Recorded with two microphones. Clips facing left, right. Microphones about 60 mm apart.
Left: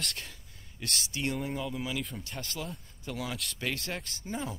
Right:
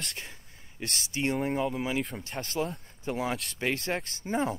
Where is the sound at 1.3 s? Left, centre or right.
Right.